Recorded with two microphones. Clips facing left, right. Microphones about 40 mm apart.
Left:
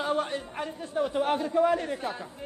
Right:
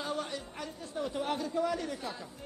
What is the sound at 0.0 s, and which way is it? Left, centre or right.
A man's voice, left.